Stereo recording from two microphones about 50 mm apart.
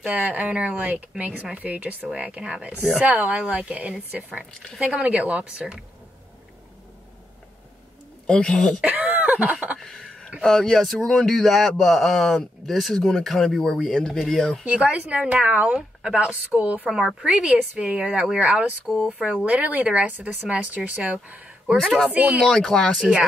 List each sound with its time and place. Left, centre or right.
0.1 s a sound: right
0.5 s speech: right
3.0 s speech: right
8.3 s speech: centre
8.8 s a sound: right
9.8 s speech: centre
14.6 s speech: right
22.5 s speech: centre